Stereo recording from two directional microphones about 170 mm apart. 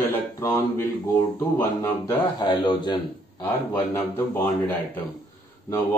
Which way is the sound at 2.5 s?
25° left (ahead or behind).